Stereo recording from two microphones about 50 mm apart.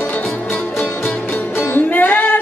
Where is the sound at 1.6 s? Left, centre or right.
Left.